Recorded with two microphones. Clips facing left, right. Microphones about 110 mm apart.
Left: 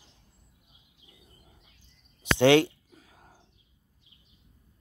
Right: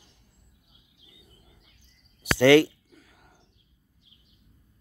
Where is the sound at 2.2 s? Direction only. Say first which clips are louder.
Right 3 dB; 20° left (ahead or behind).